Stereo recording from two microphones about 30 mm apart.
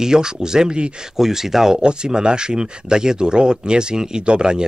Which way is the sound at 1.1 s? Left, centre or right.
Centre.